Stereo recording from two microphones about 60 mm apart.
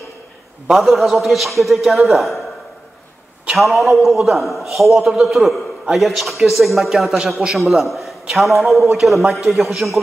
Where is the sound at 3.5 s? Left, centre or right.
Centre.